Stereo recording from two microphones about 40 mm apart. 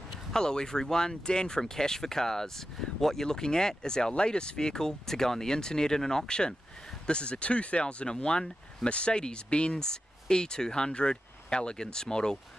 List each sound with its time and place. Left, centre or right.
0.3 s speech: centre